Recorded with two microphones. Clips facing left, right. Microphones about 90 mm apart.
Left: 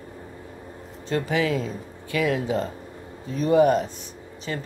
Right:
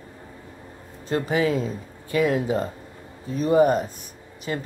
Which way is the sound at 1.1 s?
35° right (ahead or behind).